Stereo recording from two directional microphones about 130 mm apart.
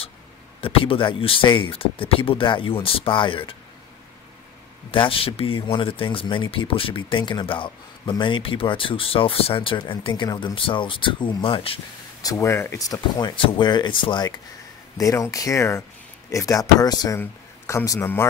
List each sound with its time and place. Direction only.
0.6 s speech: 45° left (ahead or behind)
4.9 s speech: 40° left (ahead or behind)
12.2 s speech: 25° left (ahead or behind)
13.4 s speech: 40° left (ahead or behind)
15.0 s speech: 25° left (ahead or behind)